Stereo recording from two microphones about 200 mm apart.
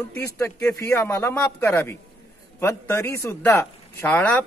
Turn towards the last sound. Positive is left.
turn(degrees=10)  # may be behind; listen again after turning